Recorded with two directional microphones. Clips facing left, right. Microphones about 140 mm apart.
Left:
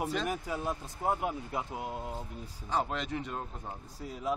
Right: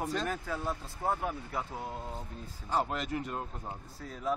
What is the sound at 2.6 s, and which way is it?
A man's voice, centre (ahead or behind).